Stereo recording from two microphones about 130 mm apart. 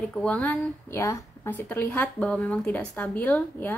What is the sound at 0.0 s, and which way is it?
A woman's voice, 10° left (ahead or behind).